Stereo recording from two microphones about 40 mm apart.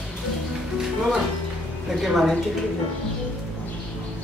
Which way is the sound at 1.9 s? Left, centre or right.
Centre.